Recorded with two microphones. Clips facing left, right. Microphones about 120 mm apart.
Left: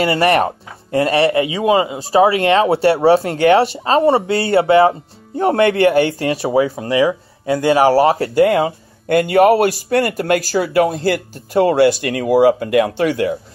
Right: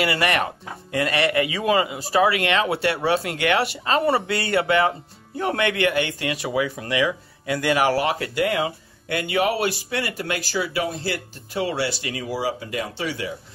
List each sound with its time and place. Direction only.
0.0 s speech: 35° left (ahead or behind); by 13.4 s 55° left (ahead or behind)